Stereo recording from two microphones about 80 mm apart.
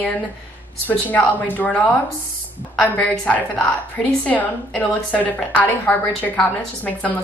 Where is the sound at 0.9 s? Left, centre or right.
Left.